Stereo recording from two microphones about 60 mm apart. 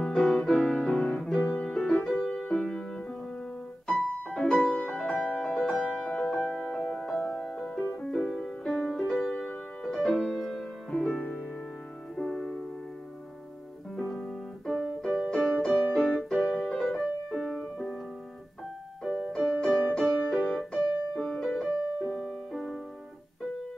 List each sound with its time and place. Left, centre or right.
0.0 s music: centre
3.8 s piano: centre
4.6 s music: centre
5.1 s music: centre
5.4 s music: centre
6.8 s music: centre
12.2 s music: centre
13.9 s piano: centre
16.6 s music: centre
19.0 s music: centre